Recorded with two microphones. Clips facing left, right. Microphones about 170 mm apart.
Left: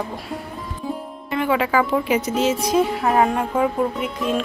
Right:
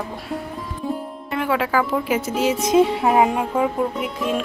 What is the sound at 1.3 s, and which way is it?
Speech, centre (ahead or behind).